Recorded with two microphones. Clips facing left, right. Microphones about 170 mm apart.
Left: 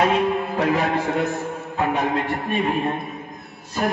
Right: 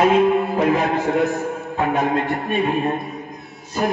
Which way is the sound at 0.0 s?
Centre (ahead or behind).